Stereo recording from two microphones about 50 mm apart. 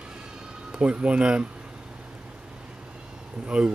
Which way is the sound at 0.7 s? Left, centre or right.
Right.